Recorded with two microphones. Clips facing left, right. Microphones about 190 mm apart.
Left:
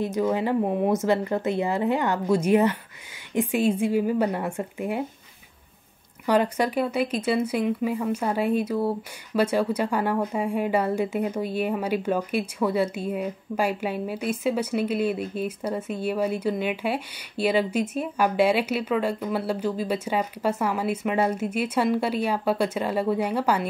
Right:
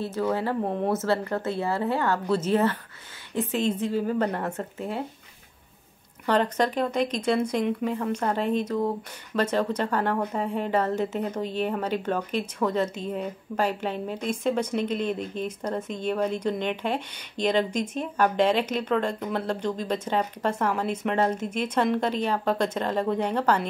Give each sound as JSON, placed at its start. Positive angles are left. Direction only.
{"t": 0.0, "sound": "speech", "side_deg": 15}
{"t": 6.2, "sound": "speech", "side_deg": 10}